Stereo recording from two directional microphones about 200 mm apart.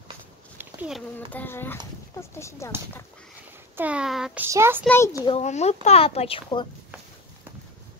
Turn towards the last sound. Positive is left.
turn(degrees=25)  # may be behind; listen again after turning